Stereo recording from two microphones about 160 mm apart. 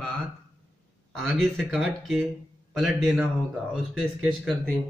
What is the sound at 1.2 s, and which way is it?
Speech, centre (ahead or behind).